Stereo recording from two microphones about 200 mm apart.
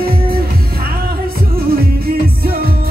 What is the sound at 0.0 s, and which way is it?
Music, 50° right (ahead or behind).